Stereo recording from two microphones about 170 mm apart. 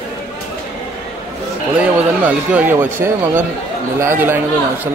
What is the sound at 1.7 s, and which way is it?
Speech, 10° right (ahead or behind).